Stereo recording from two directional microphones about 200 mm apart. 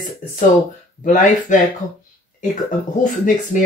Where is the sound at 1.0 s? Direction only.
40° left (ahead or behind).